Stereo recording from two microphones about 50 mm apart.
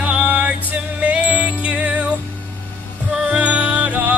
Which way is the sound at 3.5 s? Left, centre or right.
Right.